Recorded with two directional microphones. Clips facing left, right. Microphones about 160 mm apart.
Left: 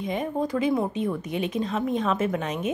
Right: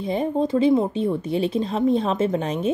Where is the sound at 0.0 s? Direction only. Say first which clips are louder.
Right 5 dB; 30° right (ahead or behind).